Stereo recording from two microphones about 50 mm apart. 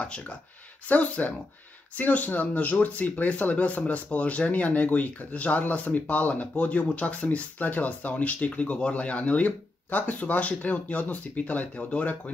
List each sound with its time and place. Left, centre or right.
0.8 s speech: left